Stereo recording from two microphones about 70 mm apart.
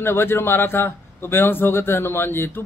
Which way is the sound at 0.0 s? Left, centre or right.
Left.